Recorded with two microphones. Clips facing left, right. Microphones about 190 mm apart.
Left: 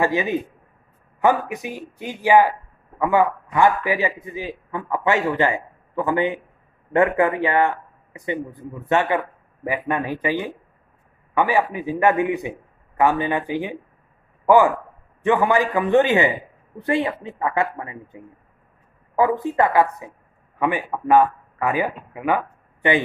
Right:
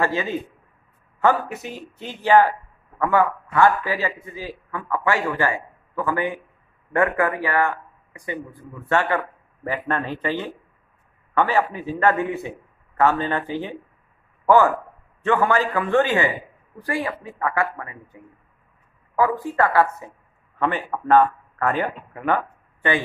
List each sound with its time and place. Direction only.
0.0 s a man's voice: 15° left (ahead or behind)
14.4 s a sound: 15° left (ahead or behind)
15.2 s a man's voice: 15° left (ahead or behind)